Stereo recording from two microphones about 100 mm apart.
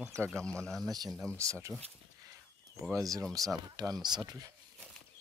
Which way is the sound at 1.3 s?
30° right (ahead or behind).